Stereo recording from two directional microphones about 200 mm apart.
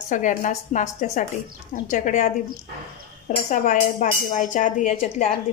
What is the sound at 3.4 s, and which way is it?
A woman's voice, 35° left (ahead or behind).